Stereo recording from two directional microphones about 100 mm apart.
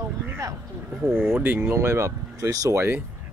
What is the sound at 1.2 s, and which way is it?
Speech, 20° right (ahead or behind).